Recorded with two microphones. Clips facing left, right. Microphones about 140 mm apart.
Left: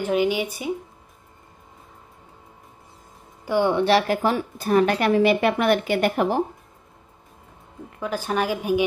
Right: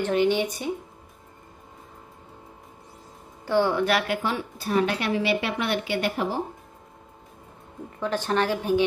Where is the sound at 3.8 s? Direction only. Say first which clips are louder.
Left 5 dB; 35° left (ahead or behind); by 6.4 s 55° left (ahead or behind).